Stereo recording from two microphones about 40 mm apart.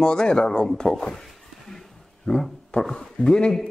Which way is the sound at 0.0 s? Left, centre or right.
Left.